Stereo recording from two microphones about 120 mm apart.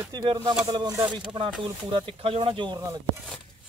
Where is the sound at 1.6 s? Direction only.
45° right (ahead or behind).